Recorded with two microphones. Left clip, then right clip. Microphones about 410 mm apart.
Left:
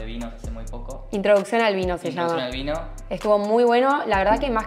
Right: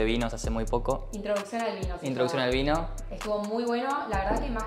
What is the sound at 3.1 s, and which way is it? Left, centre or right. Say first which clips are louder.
A woman's voice: left 12 dB; left.